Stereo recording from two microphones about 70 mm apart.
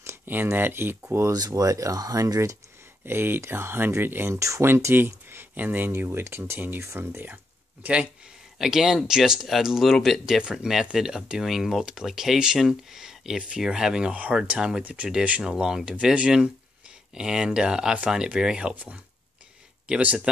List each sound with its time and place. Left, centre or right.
0.0 s speech: right
1.5 s speech: right
3.1 s speech: right
4.4 s speech: right
4.6 s speech: right
7.8 s speech: centre
9.9 s speech: centre
10.5 s speech: centre
20.0 s speech: right